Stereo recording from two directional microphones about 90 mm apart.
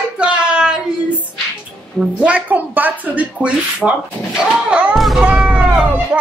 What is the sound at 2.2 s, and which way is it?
Speech, 15° right (ahead or behind).